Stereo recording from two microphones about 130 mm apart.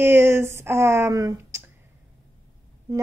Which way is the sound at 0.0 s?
20° right (ahead or behind).